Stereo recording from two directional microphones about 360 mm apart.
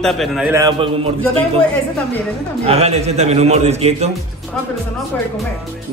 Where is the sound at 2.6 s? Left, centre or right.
Centre.